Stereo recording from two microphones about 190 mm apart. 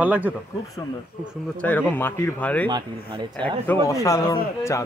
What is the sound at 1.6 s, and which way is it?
Speech, 10° left (ahead or behind).